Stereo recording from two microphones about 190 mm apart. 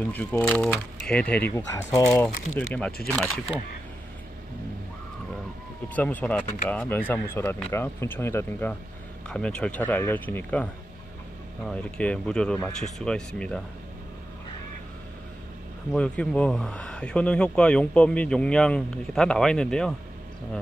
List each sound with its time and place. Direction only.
0.1 s speech: 10° left (ahead or behind)
1.5 s speech: 15° left (ahead or behind)
5.9 s speech: 10° left (ahead or behind)
15.9 s speech: 5° left (ahead or behind)